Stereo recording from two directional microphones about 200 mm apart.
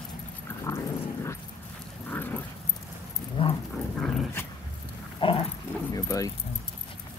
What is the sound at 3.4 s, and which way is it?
Dog, 25° left (ahead or behind).